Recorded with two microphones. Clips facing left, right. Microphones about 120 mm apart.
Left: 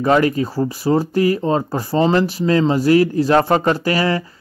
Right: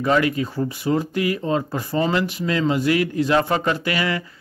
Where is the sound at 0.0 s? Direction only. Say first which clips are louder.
Left 4 dB; 40° left (ahead or behind).